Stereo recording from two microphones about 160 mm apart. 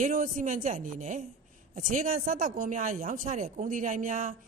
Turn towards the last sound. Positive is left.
turn(degrees=-55)  # may be behind; listen again after turning